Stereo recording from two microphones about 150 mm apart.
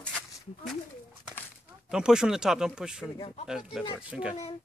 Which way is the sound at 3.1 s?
40° left (ahead or behind).